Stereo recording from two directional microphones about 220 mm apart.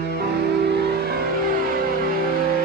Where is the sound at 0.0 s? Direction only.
45° right (ahead or behind).